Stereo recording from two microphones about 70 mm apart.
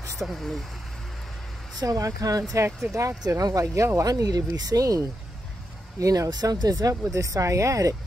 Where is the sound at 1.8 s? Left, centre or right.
Right.